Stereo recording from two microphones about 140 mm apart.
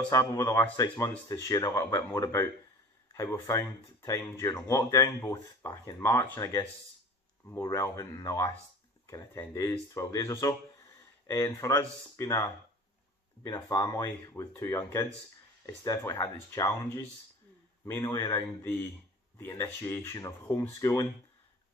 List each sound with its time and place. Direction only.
0.1 s speech: 20° left (ahead or behind)
7.7 s speech: 20° left (ahead or behind)